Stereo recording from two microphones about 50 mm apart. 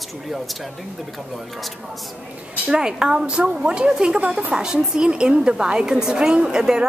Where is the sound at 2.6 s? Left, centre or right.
Centre.